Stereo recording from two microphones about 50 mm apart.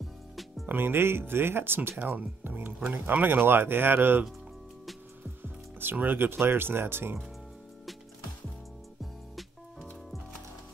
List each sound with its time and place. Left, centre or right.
0.7 s speech: right
2.1 s speech: right
5.4 s speech: right
9.3 s music: centre